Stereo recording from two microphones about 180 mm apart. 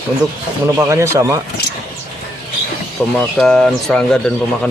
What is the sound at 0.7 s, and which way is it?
Speech, 15° right (ahead or behind).